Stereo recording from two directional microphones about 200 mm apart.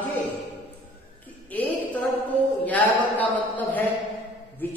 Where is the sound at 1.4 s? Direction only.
10° left (ahead or behind).